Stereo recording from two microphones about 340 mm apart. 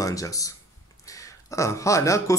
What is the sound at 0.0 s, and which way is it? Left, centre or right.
Speech, centre.